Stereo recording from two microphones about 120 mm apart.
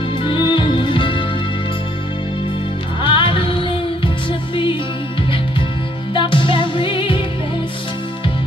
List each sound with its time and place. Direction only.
0.2 s music: 45° left (ahead or behind)
3.0 s music: 45° left (ahead or behind)
6.1 s music: 45° left (ahead or behind)